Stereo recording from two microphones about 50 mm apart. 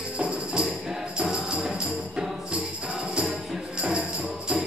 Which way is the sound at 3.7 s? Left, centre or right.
Centre.